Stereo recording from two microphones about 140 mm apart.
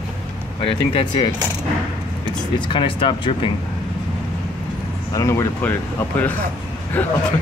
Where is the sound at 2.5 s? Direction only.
35° left (ahead or behind).